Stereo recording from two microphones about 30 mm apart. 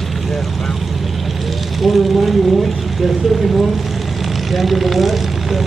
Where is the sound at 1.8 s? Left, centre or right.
Centre.